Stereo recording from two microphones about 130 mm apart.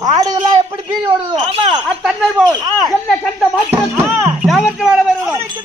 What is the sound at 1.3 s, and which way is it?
Speech, 45° right (ahead or behind).